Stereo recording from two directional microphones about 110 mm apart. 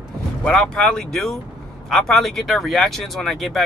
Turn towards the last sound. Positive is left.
turn(degrees=0)  # may be behind; listen again after turning